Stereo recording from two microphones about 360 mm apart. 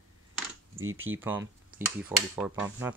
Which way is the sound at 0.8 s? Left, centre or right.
Right.